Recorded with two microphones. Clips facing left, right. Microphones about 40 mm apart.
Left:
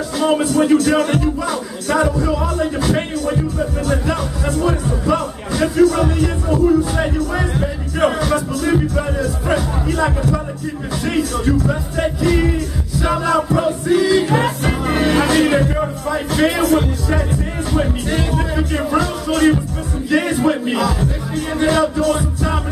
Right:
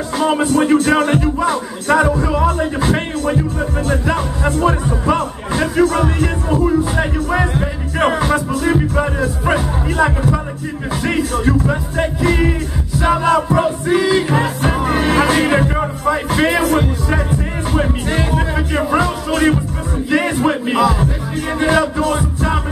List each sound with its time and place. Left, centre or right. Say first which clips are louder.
0.2 s music: even; right
1.0 s speech: right 3 dB; right
6.5 s speech: left 1 dB; centre
21.5 s music: right 1 dB; centre